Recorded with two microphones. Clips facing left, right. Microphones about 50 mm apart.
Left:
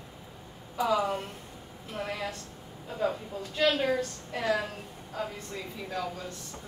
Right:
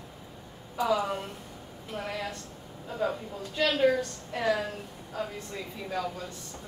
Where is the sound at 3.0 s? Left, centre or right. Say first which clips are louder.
Even; centre.